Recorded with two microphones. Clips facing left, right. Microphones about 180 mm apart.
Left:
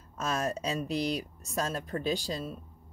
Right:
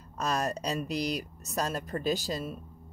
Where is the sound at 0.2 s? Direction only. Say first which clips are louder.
Right 1 dB; centre (ahead or behind).